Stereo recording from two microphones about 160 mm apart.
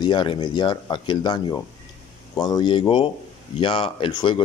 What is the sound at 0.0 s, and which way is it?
Speech, 30° left (ahead or behind).